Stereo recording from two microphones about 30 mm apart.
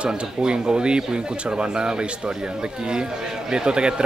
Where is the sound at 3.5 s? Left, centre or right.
Right.